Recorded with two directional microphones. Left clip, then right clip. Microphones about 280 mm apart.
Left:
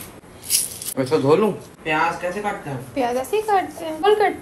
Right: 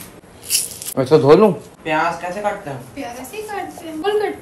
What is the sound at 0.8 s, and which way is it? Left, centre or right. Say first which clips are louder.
Speech: right 7 dB; right.